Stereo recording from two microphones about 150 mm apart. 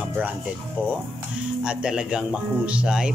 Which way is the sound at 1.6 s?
5° right (ahead or behind).